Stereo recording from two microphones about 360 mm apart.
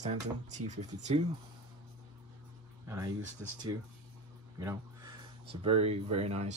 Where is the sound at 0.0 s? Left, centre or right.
Centre.